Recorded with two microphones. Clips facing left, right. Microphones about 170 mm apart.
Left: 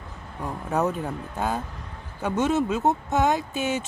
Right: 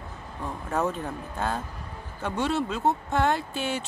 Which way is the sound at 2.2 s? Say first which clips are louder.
Left 4 dB; 20° left (ahead or behind).